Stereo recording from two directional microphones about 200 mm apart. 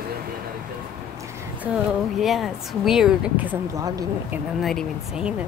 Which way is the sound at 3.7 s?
15° right (ahead or behind).